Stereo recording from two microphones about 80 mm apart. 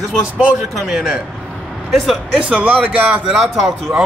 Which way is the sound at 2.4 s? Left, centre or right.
Centre.